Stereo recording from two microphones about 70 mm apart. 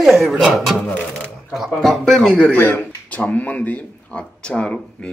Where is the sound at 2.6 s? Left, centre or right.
Left.